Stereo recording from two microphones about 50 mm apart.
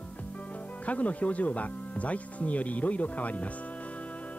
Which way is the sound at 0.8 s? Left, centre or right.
Left.